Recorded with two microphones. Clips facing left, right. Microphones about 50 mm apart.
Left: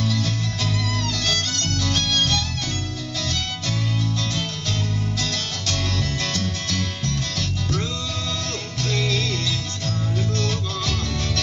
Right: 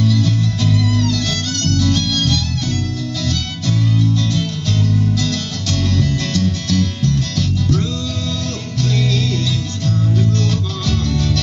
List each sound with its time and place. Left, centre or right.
0.1 s music: left
5.2 s music: left
10.9 s music: left